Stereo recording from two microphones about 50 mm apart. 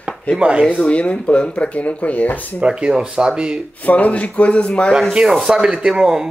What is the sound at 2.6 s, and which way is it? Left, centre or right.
Speech, centre.